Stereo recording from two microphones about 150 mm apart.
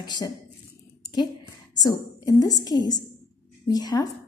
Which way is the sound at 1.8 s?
25° left (ahead or behind).